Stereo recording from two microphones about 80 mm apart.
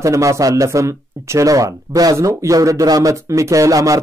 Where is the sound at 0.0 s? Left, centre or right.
Right.